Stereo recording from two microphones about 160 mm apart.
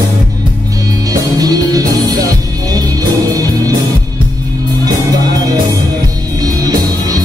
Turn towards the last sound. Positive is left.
turn(degrees=-25)  # may be behind; listen again after turning